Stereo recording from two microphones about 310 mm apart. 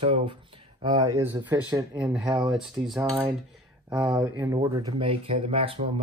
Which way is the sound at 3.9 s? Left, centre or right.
Centre.